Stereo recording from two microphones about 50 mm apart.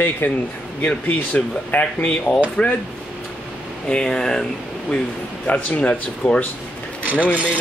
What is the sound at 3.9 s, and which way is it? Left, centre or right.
Speech, centre.